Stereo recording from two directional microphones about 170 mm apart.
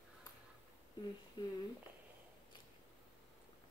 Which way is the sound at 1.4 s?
30° left (ahead or behind).